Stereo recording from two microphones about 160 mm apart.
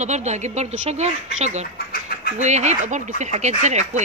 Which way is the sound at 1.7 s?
70° left (ahead or behind).